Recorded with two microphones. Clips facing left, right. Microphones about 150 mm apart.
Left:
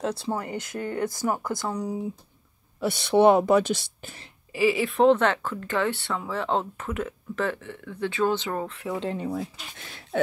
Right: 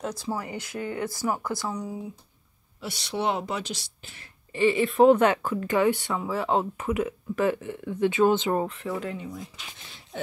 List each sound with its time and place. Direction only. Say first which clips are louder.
0.0 s speech: left 3 dB; 25° left (ahead or behind)
0.8 s speech: left 3 dB; 45° left (ahead or behind)
1.1 s speech: left 1 dB; 20° left (ahead or behind)
1.7 s speech: left 3 dB; 35° left (ahead or behind)
2.8 s speech: left 11 dB; 55° left (ahead or behind)
4.5 s speech: right 1 dB; 5° left (ahead or behind)
5.1 s speech: right 2 dB; 10° right (ahead or behind)
8.8 s speech: left 1 dB; 20° left (ahead or behind)
9.2 s speech: left 8 dB; 65° left (ahead or behind)